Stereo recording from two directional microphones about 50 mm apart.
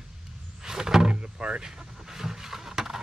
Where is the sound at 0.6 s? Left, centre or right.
Centre.